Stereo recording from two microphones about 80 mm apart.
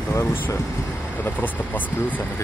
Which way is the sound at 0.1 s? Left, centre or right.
Left.